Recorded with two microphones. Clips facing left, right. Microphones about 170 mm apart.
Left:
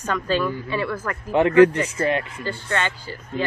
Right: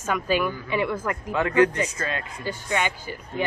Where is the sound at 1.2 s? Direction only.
25° left (ahead or behind).